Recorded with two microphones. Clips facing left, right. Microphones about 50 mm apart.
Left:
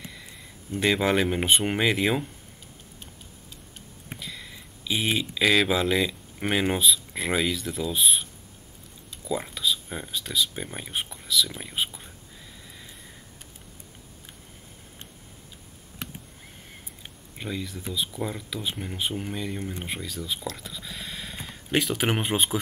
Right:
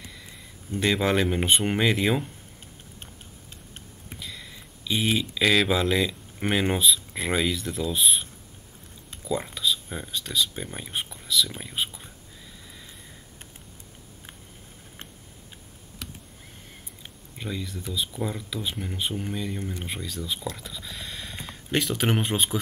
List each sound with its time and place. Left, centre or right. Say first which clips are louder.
0.0 s a sound: left 2 dB; centre
0.7 s speech: even; centre
4.2 s speech: right 1 dB; centre
9.3 s speech: right 1 dB; centre
17.0 s a sound: even; centre
17.9 s speech: right 1 dB; centre